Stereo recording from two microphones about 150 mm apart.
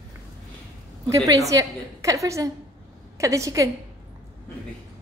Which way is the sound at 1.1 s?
20° right (ahead or behind).